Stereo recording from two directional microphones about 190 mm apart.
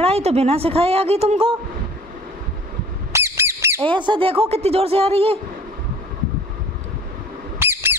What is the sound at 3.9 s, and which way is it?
A woman's voice, 25° right (ahead or behind).